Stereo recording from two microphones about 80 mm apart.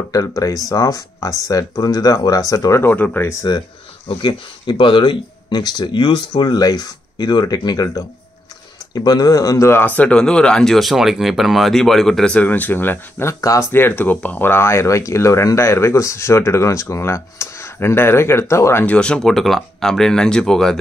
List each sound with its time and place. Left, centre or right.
0.1 s speech: left
2.8 s speech: left
3.5 s speech: left
4.2 s speech: left
9.8 s speech: centre
12.4 s speech: left
13.3 s speech: left
13.7 s speech: left
18.9 s speech: centre